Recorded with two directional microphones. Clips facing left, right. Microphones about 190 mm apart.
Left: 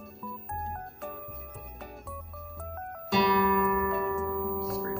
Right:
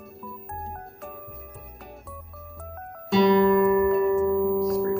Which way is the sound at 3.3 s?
25° right (ahead or behind).